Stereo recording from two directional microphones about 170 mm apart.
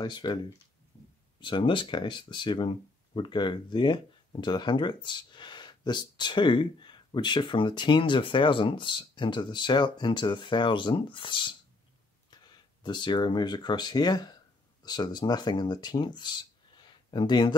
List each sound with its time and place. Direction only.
0.0 s speech: 25° left (ahead or behind)
1.4 s speech: 30° left (ahead or behind)